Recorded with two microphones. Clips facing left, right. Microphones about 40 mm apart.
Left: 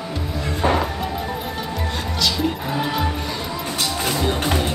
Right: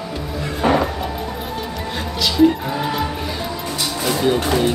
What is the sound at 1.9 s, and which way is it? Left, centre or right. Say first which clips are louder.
Music: right 1 dB; centre.